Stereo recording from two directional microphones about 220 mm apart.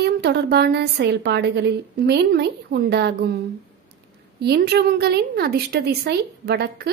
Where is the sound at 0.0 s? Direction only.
50° right (ahead or behind).